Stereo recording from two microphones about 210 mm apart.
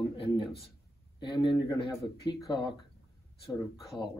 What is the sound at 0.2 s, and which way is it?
Speech, 25° left (ahead or behind).